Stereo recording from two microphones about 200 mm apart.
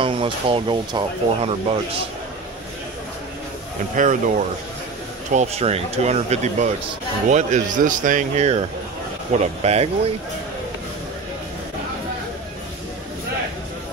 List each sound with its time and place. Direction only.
0.0 s speech: 25° right (ahead or behind)
3.9 s speech: 40° right (ahead or behind)